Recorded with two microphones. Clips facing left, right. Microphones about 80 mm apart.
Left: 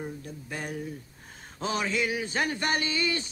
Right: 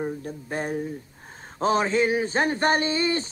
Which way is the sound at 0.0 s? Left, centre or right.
Right.